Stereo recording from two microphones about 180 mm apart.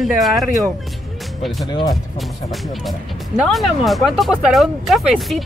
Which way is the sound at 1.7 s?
25° left (ahead or behind).